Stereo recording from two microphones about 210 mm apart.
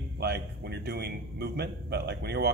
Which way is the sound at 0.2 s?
50° right (ahead or behind).